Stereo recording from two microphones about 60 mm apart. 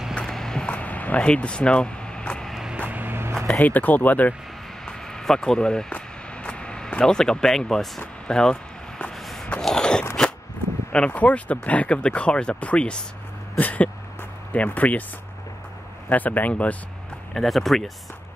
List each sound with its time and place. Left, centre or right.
0.2 s horse: centre
0.7 s vehicle: left
2.9 s vehicle: right
3.6 s speech: left
4.8 s a sound: centre
9.6 s biting: centre
10.9 s speech: centre
13.6 s a sound: left
14.5 s speech: left
16.1 s speech: left
17.3 s speech: centre